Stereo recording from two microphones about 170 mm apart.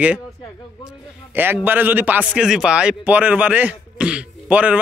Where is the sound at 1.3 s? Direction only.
10° right (ahead or behind).